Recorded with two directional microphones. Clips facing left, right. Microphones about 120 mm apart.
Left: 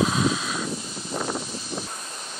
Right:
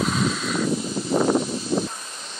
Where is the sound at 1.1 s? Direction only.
60° right (ahead or behind).